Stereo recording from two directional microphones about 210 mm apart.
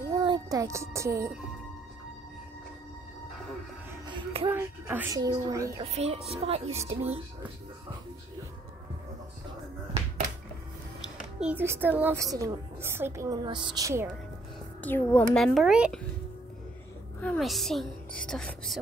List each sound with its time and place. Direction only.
0.1 s speech: 20° right (ahead or behind)
4.1 s music: 25° right (ahead or behind)
4.5 s a child's voice: 10° right (ahead or behind)
5.8 s speech: 30° right (ahead or behind)
11.3 s a child's voice: 5° right (ahead or behind)
14.8 s a woman's voice: 10° left (ahead or behind)
17.2 s a woman's voice: 5° left (ahead or behind)